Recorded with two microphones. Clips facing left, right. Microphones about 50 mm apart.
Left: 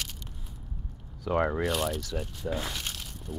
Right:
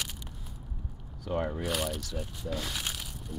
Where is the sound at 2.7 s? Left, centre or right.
Centre.